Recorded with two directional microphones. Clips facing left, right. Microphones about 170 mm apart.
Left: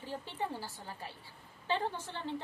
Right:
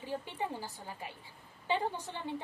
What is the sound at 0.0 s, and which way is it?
A woman's voice, 15° right (ahead or behind).